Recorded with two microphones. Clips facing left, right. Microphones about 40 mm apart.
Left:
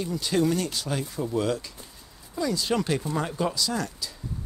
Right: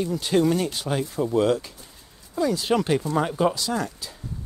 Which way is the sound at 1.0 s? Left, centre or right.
Centre.